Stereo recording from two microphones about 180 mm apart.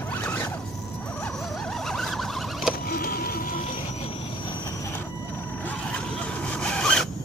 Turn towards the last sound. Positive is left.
turn(degrees=5)  # may be behind; listen again after turning